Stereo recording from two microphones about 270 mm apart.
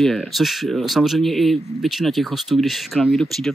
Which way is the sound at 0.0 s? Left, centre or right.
Centre.